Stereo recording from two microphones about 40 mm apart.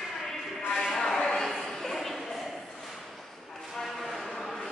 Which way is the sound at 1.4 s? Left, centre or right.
Centre.